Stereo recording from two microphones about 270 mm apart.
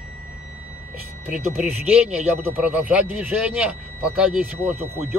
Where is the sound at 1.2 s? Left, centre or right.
Centre.